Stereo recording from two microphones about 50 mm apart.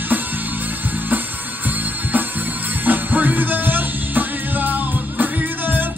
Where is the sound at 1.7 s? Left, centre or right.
Right.